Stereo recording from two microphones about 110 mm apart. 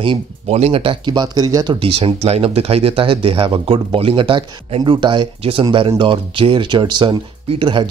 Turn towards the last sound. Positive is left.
turn(degrees=-45)  # may be behind; listen again after turning